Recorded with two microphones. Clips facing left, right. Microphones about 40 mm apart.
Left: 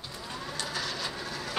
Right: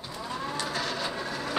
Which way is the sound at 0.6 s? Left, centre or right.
Right.